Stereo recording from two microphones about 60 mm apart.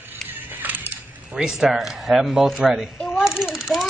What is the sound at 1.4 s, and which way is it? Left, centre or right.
A child's voice, centre.